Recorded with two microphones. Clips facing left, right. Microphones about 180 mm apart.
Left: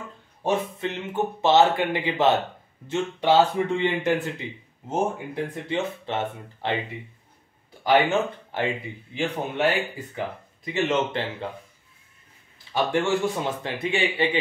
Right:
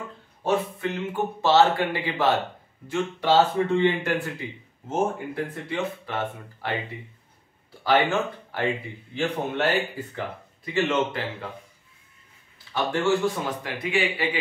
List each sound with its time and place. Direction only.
0.4 s a man's voice: 20° left (ahead or behind)
7.8 s a man's voice: 20° left (ahead or behind)
12.7 s a man's voice: 20° left (ahead or behind)